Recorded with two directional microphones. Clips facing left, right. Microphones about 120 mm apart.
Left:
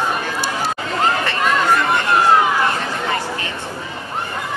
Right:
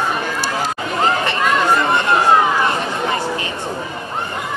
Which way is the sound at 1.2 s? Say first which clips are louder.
Right 1 dB; 20° right (ahead or behind).